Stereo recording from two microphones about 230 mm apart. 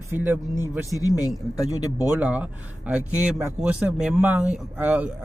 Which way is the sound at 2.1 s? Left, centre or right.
Centre.